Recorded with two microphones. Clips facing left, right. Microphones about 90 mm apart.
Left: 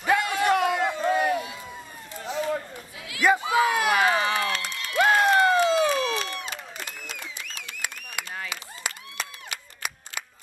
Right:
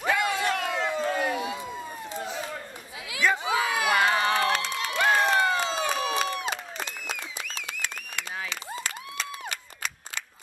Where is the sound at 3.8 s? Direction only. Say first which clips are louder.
Left 1 dB; 5° left (ahead or behind).